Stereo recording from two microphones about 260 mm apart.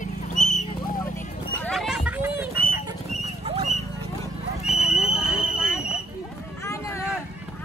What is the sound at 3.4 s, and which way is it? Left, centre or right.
Dog, right.